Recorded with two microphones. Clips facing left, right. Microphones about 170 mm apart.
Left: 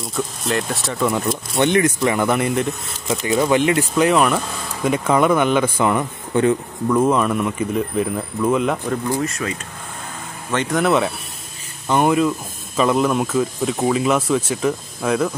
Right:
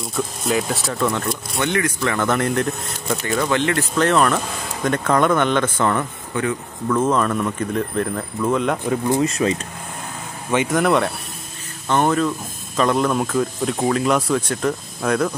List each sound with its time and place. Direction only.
0.0 s speech: centre (ahead or behind)
1.6 s speech: 20° left (ahead or behind); by 3.2 s centre (ahead or behind)
3.3 s speech: 20° left (ahead or behind)
9.0 s speech: 20° right (ahead or behind)
10.7 s speech: centre (ahead or behind)